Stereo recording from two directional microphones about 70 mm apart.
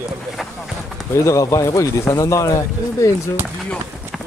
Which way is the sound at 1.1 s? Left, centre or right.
Left.